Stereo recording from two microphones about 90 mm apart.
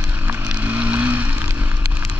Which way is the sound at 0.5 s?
15° right (ahead or behind).